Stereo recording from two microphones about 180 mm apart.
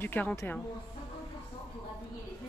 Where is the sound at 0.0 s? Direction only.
10° left (ahead or behind).